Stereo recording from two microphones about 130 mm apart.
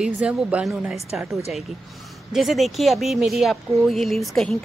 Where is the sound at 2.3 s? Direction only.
Centre (ahead or behind).